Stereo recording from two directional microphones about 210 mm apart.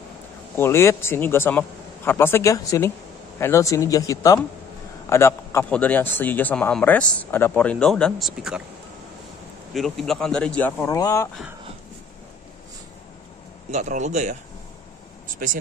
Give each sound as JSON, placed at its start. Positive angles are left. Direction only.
{"t": 0.6, "sound": "a man's voice", "side_deg": 10}
{"t": 9.8, "sound": "speech", "side_deg": 0}
{"t": 13.7, "sound": "speech", "side_deg": -35}
{"t": 15.2, "sound": "a sound", "side_deg": -40}